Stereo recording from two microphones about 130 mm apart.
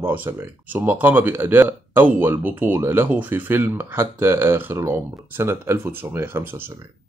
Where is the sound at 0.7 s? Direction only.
15° right (ahead or behind).